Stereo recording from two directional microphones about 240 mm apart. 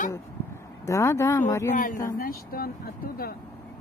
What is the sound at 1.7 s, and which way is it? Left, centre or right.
Speech, left.